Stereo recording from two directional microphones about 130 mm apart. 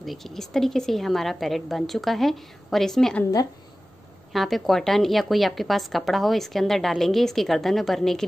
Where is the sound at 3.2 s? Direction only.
25° left (ahead or behind).